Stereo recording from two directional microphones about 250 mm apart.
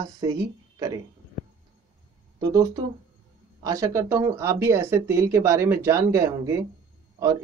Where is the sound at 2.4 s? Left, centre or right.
Centre.